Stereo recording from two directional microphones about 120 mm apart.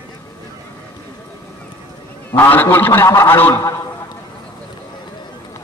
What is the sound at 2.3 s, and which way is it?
A man's voice, 15° left (ahead or behind).